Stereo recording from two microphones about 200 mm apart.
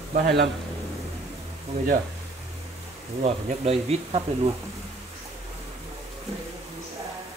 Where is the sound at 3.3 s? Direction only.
30° right (ahead or behind).